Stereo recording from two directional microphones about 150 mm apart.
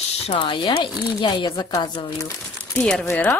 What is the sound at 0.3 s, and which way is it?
Speech, 30° left (ahead or behind).